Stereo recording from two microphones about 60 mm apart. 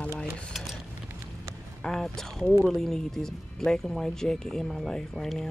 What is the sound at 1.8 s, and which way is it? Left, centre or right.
Speech, centre.